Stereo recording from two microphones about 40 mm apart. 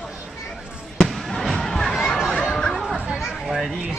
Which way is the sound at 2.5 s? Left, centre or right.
Centre.